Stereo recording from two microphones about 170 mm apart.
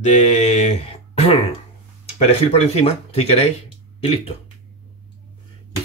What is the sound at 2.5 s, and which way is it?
Speech, 35° left (ahead or behind).